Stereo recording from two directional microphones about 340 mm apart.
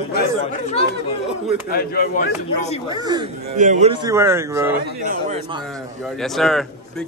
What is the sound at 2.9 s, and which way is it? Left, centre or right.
A man's voice, centre.